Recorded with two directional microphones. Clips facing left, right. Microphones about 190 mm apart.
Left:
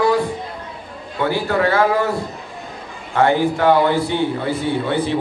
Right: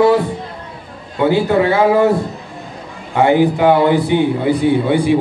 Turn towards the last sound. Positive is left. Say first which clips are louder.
# right 6 dB
turn(degrees=-15)  # may be behind; listen again after turning